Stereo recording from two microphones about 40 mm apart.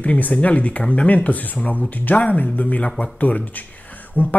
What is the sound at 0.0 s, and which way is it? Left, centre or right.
Speech, left.